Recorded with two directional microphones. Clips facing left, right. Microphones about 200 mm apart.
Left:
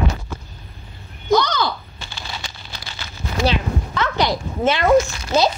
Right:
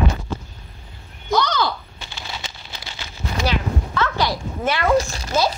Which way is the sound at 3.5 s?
20° left (ahead or behind).